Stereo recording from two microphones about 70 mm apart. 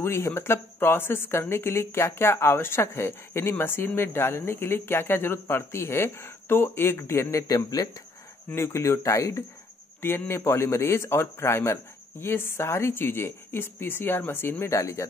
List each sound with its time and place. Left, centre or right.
0.0 s speech: left
7.4 s speech: left
8.5 s speech: left
10.0 s speech: left